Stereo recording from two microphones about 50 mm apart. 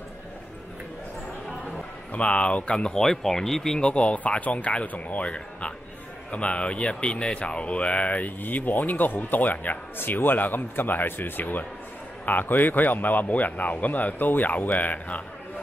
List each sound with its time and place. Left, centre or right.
2.1 s speech: left